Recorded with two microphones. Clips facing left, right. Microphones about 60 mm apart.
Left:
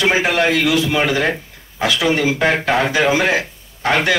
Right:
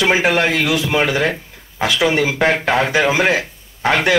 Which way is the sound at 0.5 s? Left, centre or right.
Right.